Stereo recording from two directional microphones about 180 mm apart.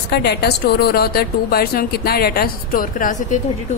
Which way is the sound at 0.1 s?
65° left (ahead or behind).